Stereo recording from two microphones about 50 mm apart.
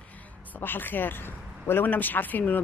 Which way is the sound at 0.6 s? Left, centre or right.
Left.